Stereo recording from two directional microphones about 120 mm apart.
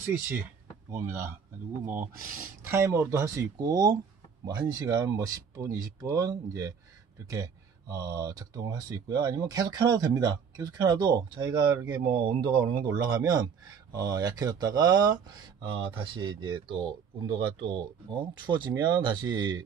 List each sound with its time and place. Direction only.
0.9 s speech: 20° right (ahead or behind)
2.7 s speech: 20° right (ahead or behind)